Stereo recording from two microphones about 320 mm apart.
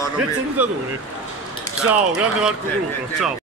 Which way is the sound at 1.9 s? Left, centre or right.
Centre.